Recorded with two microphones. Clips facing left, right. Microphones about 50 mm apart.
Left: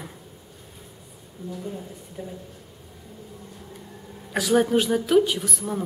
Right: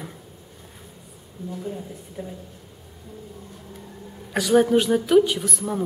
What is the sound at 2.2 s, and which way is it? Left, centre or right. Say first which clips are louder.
Speech: right 1 dB; centre.